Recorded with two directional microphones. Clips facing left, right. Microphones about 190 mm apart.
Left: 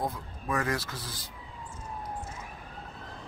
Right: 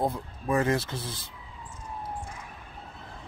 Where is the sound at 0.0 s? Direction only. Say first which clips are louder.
Right 5 dB; 25° right (ahead or behind).